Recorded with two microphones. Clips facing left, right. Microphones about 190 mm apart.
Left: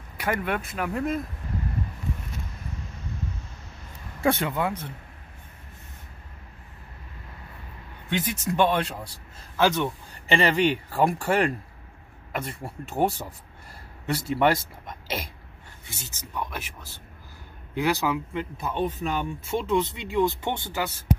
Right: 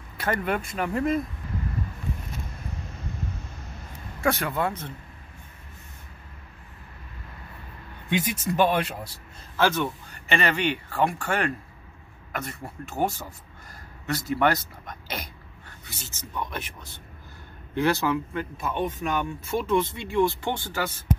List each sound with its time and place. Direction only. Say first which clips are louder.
0.2 s speech: right 1 dB; 5° left (ahead or behind)
4.2 s speech: left 1 dB; 25° left (ahead or behind)
8.1 s speech: right 1 dB; 15° right (ahead or behind)
9.6 s speech: left 1 dB; 20° left (ahead or behind)
10.2 s a man's voice: left 3 dB; 30° left (ahead or behind)
15.8 s a sound: left 1 dB; 25° left (ahead or behind)
16.1 s speech: even; 10° left (ahead or behind); by 18.9 s 30° left (ahead or behind)
19.5 s speech: right 1 dB; 15° left (ahead or behind)